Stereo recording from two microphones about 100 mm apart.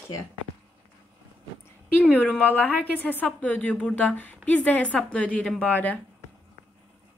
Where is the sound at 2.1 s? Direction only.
15° left (ahead or behind).